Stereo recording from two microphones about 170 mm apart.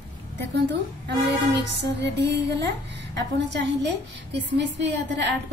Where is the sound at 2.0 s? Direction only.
90° right.